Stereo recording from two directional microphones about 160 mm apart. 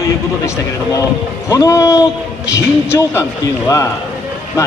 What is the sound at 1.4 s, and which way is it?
Speech, 20° left (ahead or behind).